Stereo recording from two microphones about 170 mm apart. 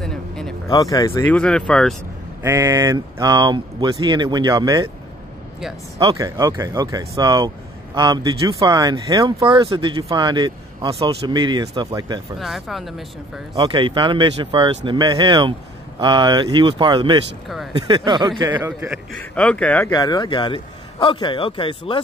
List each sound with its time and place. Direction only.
0.0 s a sound: 5° left (ahead or behind)
0.7 s a man's voice: 20° left (ahead or behind)
1.3 s speech: 5° left (ahead or behind)
2.4 s speech: 15° right (ahead or behind)
5.9 s speech: 20° right (ahead or behind)
12.4 s speech: centre (ahead or behind)
13.6 s speech: 30° right (ahead or behind)
19.1 s speech: 5° left (ahead or behind)
19.9 s a man's voice: 25° left (ahead or behind)